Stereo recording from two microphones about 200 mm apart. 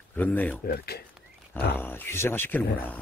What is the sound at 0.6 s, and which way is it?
Speech, 50° left (ahead or behind).